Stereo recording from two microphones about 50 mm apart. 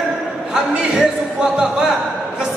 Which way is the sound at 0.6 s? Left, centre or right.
Centre.